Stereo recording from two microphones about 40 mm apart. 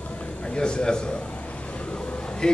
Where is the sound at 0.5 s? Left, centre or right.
Left.